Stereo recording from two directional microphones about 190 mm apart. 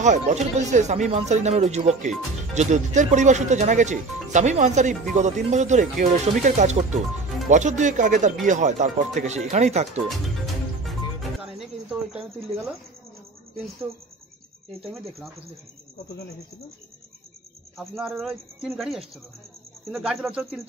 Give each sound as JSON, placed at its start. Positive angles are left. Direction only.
{"t": 0.0, "sound": "speech", "side_deg": -40}
{"t": 10.0, "sound": "music", "side_deg": 0}
{"t": 14.8, "sound": "speech", "side_deg": 0}
{"t": 17.7, "sound": "speech", "side_deg": 0}